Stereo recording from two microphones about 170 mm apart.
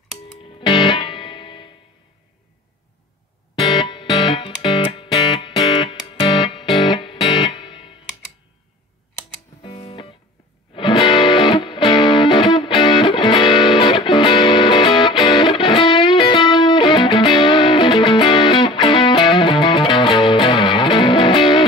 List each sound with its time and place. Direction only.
0.4 s music: 30° left (ahead or behind)
3.6 s music: 30° left (ahead or behind)
9.6 s music: 35° left (ahead or behind)